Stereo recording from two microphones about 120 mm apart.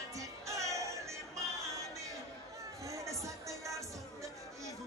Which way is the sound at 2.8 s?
25° right (ahead or behind).